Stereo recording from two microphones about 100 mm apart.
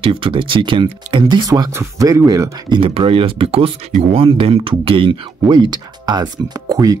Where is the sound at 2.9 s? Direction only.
70° right (ahead or behind).